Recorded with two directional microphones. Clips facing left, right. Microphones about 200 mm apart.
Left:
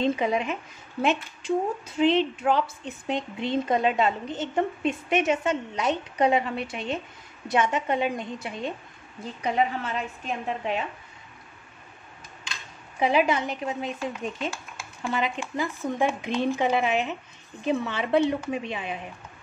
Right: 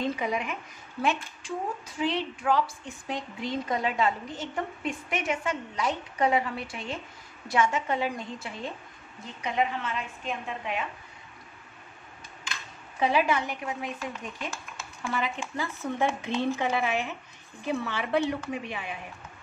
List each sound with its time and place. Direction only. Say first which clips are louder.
0.0 s a woman's voice: left 5 dB; 25° left (ahead or behind)
9.2 s speech: left 3 dB; 35° left (ahead or behind)
13.0 s a woman's voice: left 3 dB; 20° left (ahead or behind)